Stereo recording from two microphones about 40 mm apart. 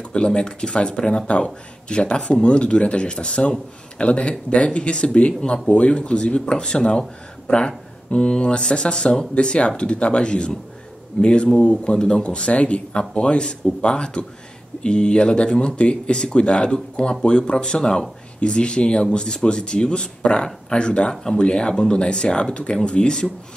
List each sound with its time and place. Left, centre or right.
0.1 s speech: left
21.1 s speech: centre